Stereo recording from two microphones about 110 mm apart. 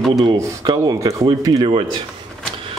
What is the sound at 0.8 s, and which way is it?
Speech, 30° right (ahead or behind).